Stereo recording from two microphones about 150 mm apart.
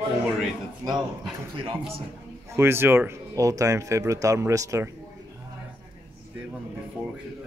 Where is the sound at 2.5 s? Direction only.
15° right (ahead or behind).